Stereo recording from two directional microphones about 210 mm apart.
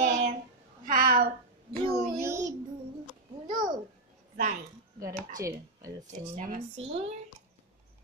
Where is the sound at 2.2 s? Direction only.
15° right (ahead or behind).